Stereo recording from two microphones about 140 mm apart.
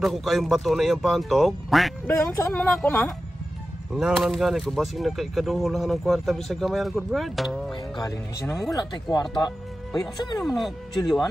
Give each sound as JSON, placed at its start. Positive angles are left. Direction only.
{"t": 0.0, "sound": "speech", "side_deg": 0}
{"t": 2.0, "sound": "speech", "side_deg": 20}
{"t": 3.9, "sound": "speech", "side_deg": -5}
{"t": 7.7, "sound": "speech", "side_deg": 30}
{"t": 10.4, "sound": "speech", "side_deg": 0}